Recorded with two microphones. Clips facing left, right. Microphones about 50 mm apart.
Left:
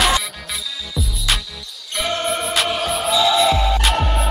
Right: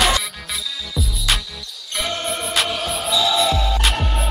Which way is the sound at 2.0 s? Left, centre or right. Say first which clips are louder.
Left 3 dB; centre.